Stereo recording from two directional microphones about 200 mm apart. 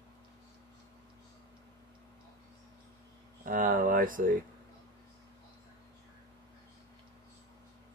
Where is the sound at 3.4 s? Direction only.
40° right (ahead or behind).